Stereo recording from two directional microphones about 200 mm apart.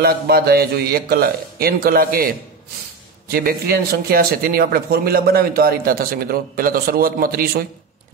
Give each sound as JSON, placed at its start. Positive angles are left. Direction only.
{"t": 0.0, "sound": "speech", "side_deg": -50}